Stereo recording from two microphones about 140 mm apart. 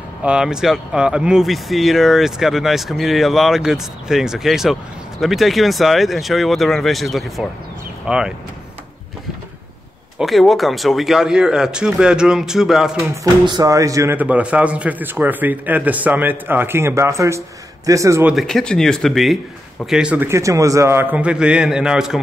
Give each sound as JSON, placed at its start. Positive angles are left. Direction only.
{"t": 0.2, "sound": "speech", "side_deg": -5}
{"t": 10.1, "sound": "speech", "side_deg": 0}
{"t": 13.1, "sound": "speech", "side_deg": -25}
{"t": 14.1, "sound": "speech", "side_deg": -10}
{"t": 18.2, "sound": "speech", "side_deg": 0}